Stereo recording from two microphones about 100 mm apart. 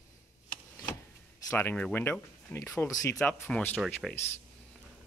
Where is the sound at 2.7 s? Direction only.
35° left (ahead or behind).